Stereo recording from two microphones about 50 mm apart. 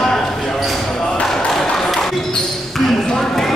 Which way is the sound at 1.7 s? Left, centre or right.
Centre.